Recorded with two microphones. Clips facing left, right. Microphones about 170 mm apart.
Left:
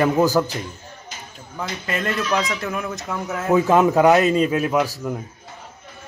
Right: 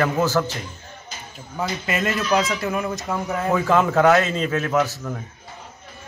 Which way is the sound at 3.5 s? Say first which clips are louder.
Left 4 dB; 15° left (ahead or behind).